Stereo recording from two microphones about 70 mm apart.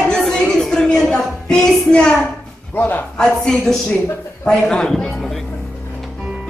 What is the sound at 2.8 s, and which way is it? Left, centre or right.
Speech, left.